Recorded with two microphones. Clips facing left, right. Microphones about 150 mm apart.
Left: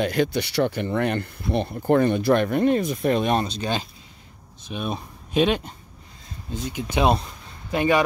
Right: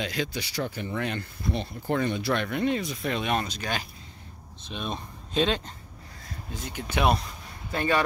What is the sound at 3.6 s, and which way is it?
Speech, 20° left (ahead or behind).